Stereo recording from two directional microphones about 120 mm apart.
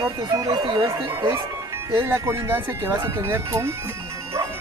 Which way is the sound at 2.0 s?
25° right (ahead or behind).